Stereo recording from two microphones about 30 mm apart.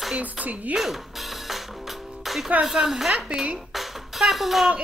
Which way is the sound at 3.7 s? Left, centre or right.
Centre.